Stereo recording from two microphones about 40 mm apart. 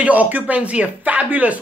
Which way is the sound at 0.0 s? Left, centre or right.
Right.